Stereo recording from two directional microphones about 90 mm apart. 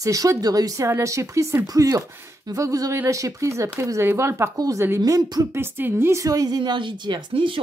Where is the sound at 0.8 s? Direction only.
30° right (ahead or behind).